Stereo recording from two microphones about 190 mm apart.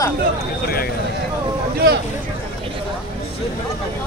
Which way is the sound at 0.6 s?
50° left (ahead or behind).